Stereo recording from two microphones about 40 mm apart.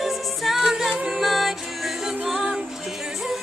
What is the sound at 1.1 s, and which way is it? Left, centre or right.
Music, centre.